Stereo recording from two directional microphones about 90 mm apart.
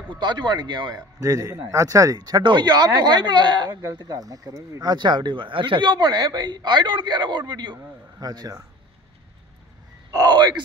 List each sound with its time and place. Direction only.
0.2 s speech: 55° right (ahead or behind)
1.2 s a man's voice: 40° right (ahead or behind)
10.1 s speech: 50° right (ahead or behind)